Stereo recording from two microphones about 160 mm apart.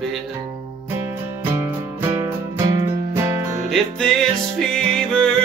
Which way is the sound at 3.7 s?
5° left (ahead or behind).